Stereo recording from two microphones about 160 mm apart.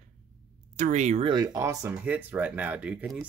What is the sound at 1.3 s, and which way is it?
Speech, 25° right (ahead or behind).